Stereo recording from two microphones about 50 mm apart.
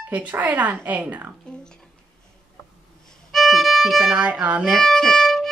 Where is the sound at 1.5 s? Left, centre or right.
Centre.